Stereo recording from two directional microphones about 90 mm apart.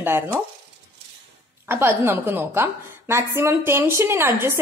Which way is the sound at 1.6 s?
25° right (ahead or behind).